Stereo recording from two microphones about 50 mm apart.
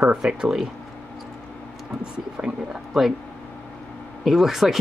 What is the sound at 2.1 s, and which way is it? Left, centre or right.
Speech, centre.